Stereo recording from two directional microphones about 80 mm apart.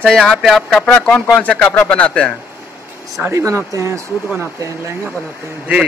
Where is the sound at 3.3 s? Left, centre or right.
Right.